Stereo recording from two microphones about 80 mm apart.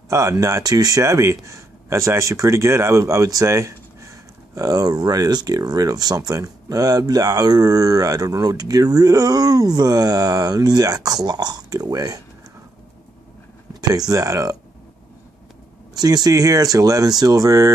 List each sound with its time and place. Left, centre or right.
0.1 s speech: right
13.7 s speech: right
16.0 s speech: right